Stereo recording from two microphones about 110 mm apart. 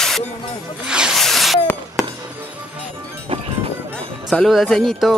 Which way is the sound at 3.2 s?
60° right (ahead or behind).